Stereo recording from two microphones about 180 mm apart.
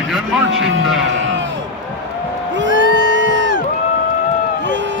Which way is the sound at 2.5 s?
90° right.